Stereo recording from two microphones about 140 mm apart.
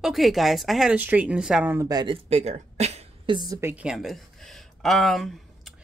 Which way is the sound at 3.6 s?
15° right (ahead or behind).